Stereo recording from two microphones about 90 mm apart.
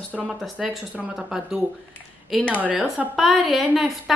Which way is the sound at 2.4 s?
15° left (ahead or behind).